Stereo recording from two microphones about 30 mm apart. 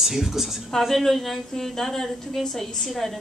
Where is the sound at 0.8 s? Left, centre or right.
Centre.